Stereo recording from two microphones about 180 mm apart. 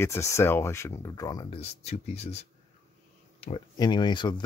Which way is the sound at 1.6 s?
35° left (ahead or behind).